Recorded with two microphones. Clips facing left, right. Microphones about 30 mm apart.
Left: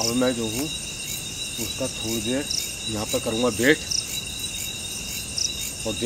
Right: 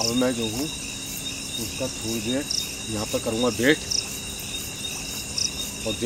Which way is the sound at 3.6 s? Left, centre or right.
Left.